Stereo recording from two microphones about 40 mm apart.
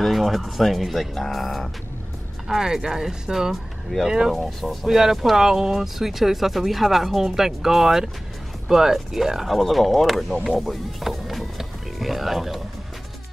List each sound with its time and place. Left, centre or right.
0.0 s speech: centre
2.4 s speech: centre
9.5 s speech: centre